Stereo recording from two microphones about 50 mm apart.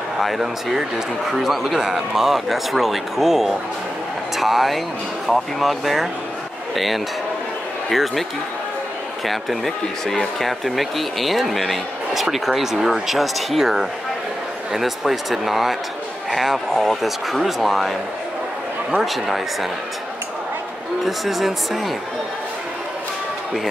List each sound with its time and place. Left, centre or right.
0.2 s speech: centre
19.0 s speech: centre
21.0 s speech: centre